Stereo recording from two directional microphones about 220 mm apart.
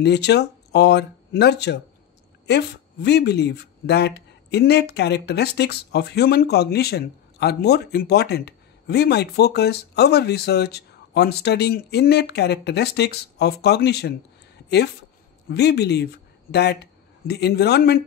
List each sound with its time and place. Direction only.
0.0 s speech: 50° left (ahead or behind)
15.5 s speech: 50° left (ahead or behind)